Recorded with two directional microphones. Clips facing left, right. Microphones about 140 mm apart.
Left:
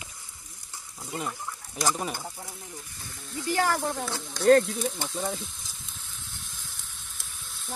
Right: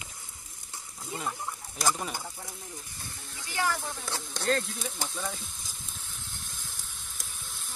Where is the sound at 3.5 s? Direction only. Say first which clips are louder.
Left 5 dB; 50° left (ahead or behind).